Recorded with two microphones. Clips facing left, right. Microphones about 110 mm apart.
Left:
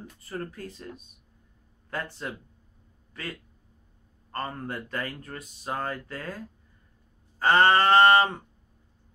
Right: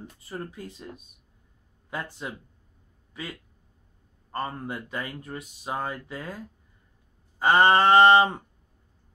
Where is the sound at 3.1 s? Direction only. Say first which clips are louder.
Even; 10° right (ahead or behind).